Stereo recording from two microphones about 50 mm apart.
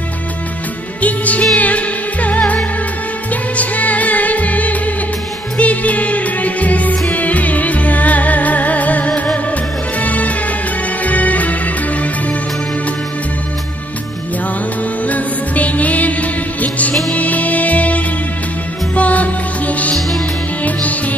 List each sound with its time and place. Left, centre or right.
1.0 s music: left
15.0 s music: left